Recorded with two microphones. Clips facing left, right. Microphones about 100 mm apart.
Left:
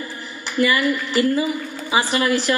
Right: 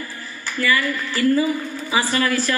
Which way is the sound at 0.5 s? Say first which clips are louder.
Left 3 dB; 20° left (ahead or behind).